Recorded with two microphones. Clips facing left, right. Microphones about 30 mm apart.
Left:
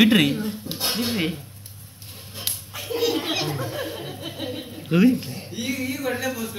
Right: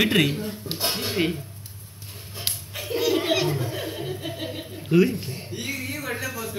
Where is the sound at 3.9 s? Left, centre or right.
Centre.